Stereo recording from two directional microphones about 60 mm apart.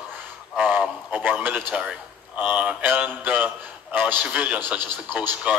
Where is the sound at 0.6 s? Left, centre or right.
Right.